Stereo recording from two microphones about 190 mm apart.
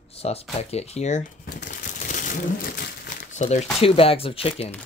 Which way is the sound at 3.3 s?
35° left (ahead or behind).